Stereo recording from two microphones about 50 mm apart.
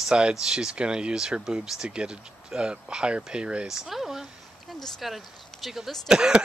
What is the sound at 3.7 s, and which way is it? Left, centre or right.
Speech, centre.